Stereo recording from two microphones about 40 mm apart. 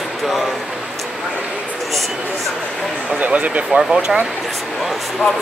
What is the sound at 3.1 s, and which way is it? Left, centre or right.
Speech, right.